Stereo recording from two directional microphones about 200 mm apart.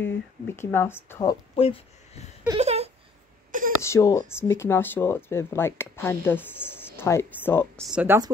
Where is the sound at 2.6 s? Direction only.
30° right (ahead or behind).